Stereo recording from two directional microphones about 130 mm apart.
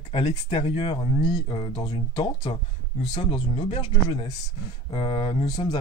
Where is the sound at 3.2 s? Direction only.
45° left (ahead or behind).